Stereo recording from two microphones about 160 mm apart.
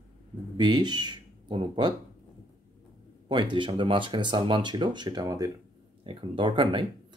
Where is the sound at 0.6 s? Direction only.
30° right (ahead or behind).